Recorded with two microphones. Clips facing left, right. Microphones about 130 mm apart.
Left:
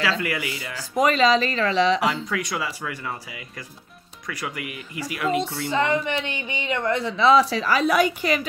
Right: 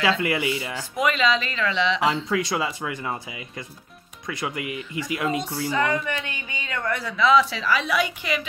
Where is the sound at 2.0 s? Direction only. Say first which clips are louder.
Right 2 dB; 25° right (ahead or behind).